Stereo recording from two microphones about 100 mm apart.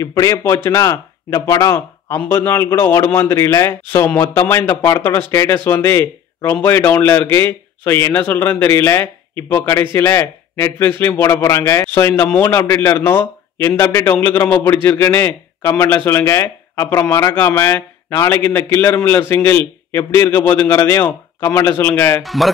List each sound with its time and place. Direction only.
0.0 s speech: 30° left (ahead or behind)
22.2 s speech: centre (ahead or behind)